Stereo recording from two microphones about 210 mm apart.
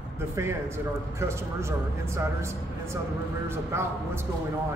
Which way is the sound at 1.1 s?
15° right (ahead or behind).